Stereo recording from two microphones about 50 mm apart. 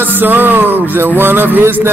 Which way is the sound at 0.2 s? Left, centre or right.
Right.